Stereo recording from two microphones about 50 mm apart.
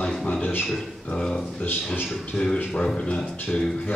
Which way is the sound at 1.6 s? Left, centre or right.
Left.